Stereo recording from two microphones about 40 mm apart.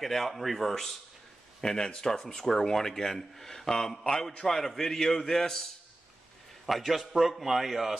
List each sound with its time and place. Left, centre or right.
0.0 s speech: centre
6.6 s a man's voice: centre